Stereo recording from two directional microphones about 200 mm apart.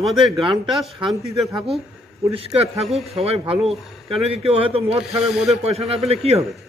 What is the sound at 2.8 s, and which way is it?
Speech, centre (ahead or behind).